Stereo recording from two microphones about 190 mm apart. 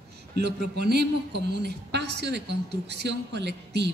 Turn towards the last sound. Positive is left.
turn(degrees=-65)  # may be behind; listen again after turning